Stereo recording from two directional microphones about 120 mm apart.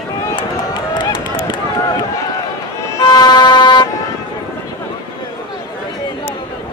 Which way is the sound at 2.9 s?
35° left (ahead or behind).